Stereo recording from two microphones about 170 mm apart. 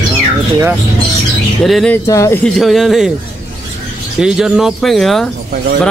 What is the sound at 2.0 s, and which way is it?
Speech, 15° left (ahead or behind).